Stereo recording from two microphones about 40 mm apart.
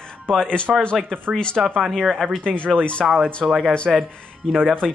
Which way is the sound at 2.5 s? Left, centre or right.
Left.